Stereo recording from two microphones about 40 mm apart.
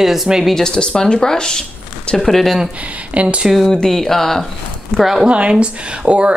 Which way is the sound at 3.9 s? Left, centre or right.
Centre.